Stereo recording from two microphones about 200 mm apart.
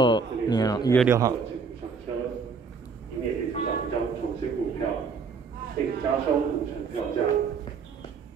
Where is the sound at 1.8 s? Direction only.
25° right (ahead or behind).